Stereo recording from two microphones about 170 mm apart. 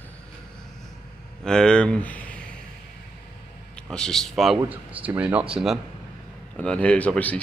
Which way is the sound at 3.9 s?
5° left (ahead or behind).